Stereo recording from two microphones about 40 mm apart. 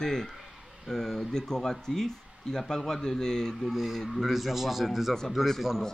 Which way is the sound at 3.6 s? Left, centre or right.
Centre.